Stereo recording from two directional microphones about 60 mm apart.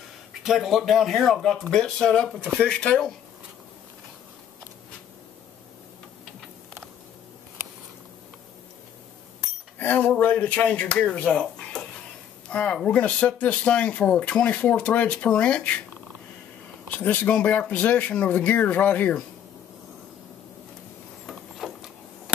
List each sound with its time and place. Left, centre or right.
0.4 s speech: centre
9.8 s speech: left
12.4 s a sound: centre
12.8 s speech: left
16.9 s speech: left
21.3 s a sound: centre